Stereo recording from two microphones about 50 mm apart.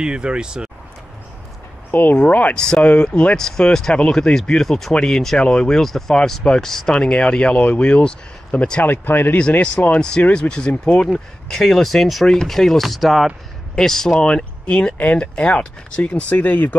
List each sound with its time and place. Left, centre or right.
0.0 s speech: centre
1.9 s speech: left
2.5 s speech: centre
2.8 s speech: left
3.3 s speech: centre
4.9 s speech: centre
5.8 s speech: centre; by 8.8 s left
8.8 s speech: left
9.9 s speech: centre
10.7 s speech: left
11.1 s speech: centre; by 16.7 s left